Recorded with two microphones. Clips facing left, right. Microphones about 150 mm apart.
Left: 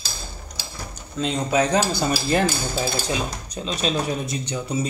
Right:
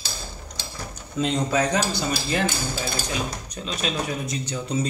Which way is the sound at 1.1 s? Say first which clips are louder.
Right 1 dB; centre (ahead or behind).